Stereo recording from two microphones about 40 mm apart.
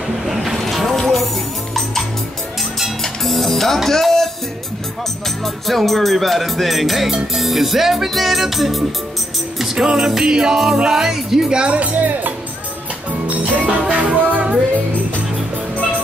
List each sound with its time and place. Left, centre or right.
0.2 s vehicle: centre
3.0 s music: centre
5.4 s music: centre
9.8 s speech: centre
11.6 s speech: right
13.7 s music: right